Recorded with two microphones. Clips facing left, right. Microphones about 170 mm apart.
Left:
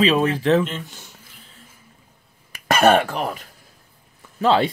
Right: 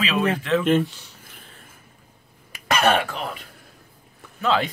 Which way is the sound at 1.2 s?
55° right (ahead or behind).